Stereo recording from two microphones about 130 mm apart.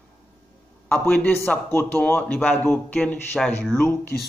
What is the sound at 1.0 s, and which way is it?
Speech, 15° left (ahead or behind).